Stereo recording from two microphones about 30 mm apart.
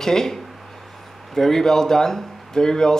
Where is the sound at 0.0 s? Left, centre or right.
Centre.